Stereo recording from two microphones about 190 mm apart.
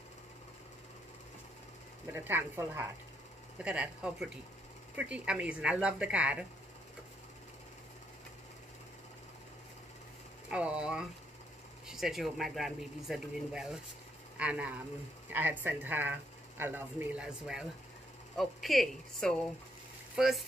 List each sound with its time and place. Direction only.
2.1 s speech: 10° right (ahead or behind)
10.5 s speech: 5° right (ahead or behind)